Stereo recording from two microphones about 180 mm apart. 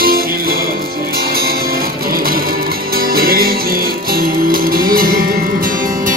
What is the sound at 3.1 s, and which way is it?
Music, 55° right (ahead or behind).